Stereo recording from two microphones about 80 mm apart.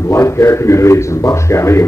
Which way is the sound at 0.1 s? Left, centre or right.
Left.